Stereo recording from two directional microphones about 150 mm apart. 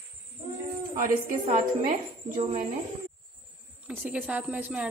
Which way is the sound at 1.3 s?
55° right (ahead or behind).